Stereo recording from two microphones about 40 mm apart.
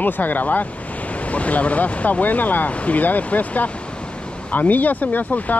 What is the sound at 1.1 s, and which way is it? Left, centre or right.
Speech, left.